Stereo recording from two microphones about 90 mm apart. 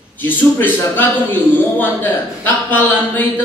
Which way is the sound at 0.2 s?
20° left (ahead or behind).